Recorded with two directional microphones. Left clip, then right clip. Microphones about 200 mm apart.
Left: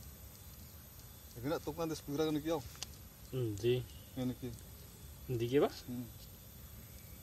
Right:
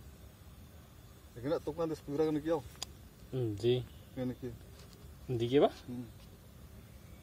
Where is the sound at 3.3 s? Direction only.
20° right (ahead or behind).